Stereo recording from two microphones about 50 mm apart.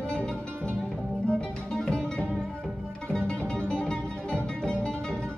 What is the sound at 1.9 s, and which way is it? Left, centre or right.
Music, centre.